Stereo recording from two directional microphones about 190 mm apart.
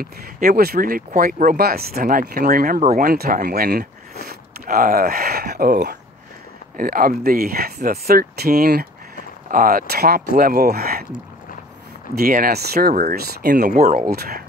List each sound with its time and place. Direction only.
0.0 s speech: 50° right (ahead or behind)
12.2 s speech: 50° right (ahead or behind)
13.7 s speech: 40° right (ahead or behind); by 14.4 s 55° right (ahead or behind)